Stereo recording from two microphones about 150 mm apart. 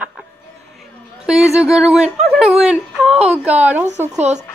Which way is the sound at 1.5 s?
5° right (ahead or behind).